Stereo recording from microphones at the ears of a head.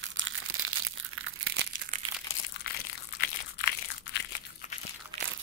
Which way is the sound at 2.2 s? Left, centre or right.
Left.